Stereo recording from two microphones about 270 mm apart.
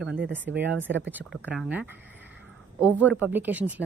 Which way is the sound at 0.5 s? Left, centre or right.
Right.